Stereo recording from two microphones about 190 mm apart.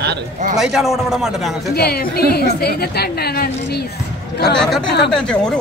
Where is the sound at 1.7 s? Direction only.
55° left (ahead or behind).